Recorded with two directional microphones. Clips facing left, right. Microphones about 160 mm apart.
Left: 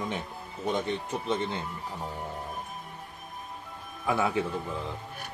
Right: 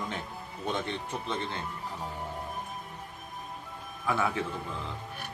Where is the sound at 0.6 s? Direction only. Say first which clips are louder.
Left 4 dB; 15° left (ahead or behind).